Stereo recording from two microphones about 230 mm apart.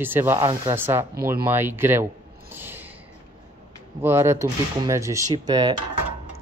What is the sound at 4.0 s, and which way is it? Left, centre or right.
Speech, centre.